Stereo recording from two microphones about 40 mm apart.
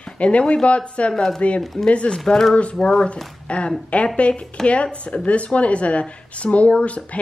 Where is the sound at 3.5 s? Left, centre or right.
Left.